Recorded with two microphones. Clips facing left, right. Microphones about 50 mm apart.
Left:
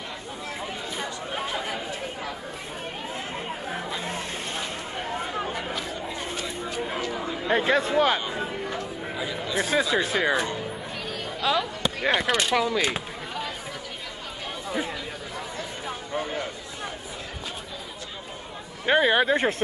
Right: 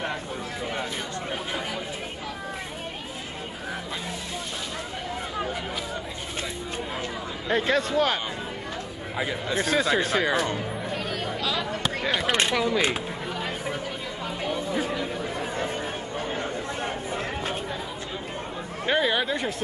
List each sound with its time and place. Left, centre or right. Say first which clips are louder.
7.4 s speech: left 1 dB; centre
9.6 s speech: even; centre
11.4 s a sound: left 5 dB; left
12.3 s speech: even; right
18.9 s speech: left 4 dB; left